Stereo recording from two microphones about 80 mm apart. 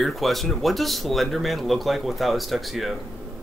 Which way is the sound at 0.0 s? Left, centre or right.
Centre.